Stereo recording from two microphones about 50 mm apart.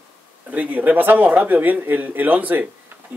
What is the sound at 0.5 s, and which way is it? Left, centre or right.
A man's voice, right.